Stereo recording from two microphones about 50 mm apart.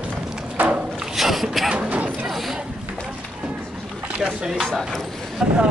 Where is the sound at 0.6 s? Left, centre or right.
Right.